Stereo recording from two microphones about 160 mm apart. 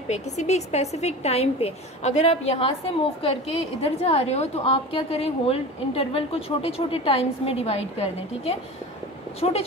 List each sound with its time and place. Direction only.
0.1 s a woman's voice: 45° left (ahead or behind)